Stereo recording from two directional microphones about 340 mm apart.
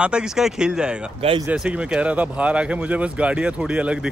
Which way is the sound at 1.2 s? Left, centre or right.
Centre.